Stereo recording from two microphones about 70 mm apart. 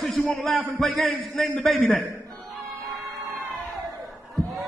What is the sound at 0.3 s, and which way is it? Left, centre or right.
Speech, centre.